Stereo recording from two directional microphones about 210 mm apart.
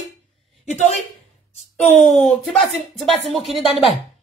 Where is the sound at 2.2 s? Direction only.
Centre (ahead or behind).